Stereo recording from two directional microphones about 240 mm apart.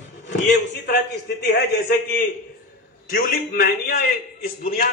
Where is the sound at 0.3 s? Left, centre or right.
Left.